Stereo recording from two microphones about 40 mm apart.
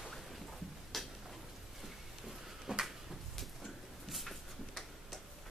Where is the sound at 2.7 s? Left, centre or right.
Right.